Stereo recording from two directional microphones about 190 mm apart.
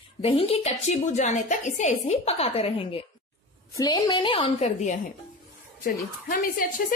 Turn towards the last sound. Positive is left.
turn(degrees=50)  # may be behind; listen again after turning